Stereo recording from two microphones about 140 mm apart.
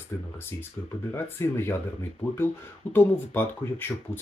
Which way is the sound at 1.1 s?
20° left (ahead or behind).